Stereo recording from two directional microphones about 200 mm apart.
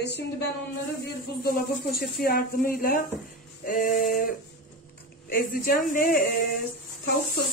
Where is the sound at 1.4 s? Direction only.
50° left (ahead or behind).